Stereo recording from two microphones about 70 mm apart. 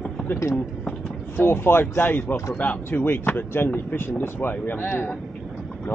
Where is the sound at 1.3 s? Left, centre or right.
Left.